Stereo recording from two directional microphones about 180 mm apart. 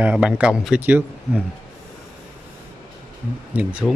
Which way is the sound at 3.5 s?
5° right (ahead or behind).